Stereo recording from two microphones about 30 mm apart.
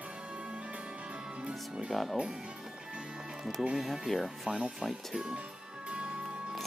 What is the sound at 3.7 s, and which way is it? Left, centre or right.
Speech, centre.